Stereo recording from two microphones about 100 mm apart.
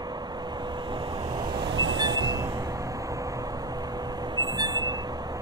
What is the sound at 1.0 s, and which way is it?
Train, 40° right (ahead or behind).